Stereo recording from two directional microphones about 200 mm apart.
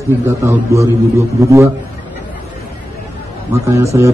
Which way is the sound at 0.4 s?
15° right (ahead or behind).